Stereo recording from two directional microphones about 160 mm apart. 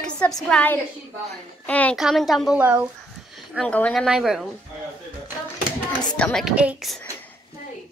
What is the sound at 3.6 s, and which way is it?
Speech, 5° left (ahead or behind).